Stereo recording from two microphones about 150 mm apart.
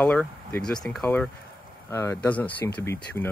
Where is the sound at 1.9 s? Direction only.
20° left (ahead or behind).